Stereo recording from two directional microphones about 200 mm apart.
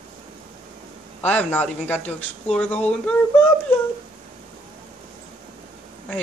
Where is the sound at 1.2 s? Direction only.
5° left (ahead or behind).